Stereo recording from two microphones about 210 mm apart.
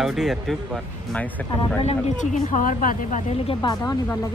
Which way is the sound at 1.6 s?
30° left (ahead or behind).